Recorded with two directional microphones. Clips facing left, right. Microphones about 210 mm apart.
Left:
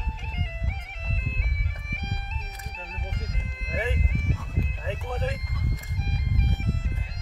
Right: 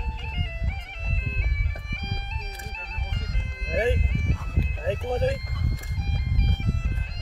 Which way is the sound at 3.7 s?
35° right (ahead or behind).